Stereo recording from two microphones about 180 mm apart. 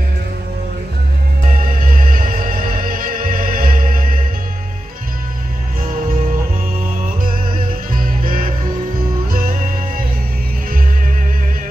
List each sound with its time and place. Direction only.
1.9 s music: 50° right (ahead or behind)
7.9 s music: 50° right (ahead or behind)